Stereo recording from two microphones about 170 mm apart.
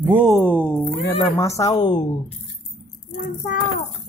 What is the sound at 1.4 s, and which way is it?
Speech, 20° left (ahead or behind).